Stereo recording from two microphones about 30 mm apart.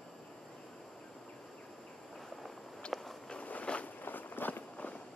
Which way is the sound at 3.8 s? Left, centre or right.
Left.